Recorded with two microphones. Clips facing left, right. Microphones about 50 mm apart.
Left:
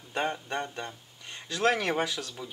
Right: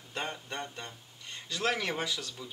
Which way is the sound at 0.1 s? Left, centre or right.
Centre.